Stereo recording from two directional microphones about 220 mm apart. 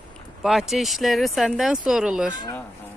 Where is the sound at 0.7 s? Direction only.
Centre (ahead or behind).